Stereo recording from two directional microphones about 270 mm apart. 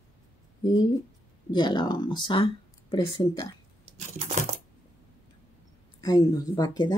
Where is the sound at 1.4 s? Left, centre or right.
Centre.